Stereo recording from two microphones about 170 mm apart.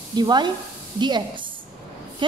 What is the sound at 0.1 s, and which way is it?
A woman's voice, 25° right (ahead or behind).